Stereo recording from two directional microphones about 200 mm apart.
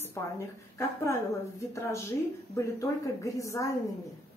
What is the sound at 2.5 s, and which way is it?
A woman's voice, 15° left (ahead or behind).